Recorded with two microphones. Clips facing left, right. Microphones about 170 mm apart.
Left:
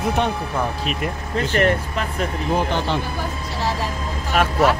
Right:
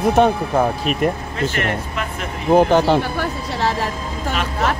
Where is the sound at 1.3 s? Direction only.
35° left (ahead or behind).